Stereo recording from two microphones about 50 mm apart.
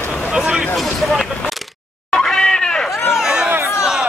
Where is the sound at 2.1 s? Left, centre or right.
Centre.